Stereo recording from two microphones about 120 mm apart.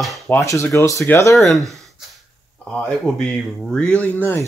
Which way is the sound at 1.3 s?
Centre (ahead or behind).